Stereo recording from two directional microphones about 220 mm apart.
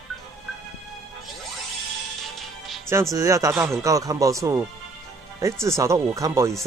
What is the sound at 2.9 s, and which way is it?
Speech, 15° right (ahead or behind).